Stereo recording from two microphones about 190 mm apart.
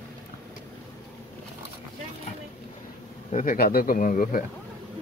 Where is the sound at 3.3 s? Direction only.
45° left (ahead or behind).